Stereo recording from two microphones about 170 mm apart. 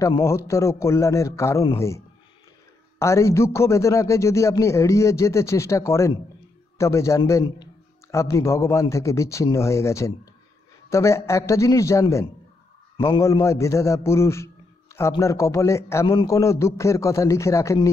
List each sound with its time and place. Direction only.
0.2 s a man's voice: 15° left (ahead or behind)
12.9 s a man's voice: 30° left (ahead or behind)
13.2 s a man's voice: 15° left (ahead or behind)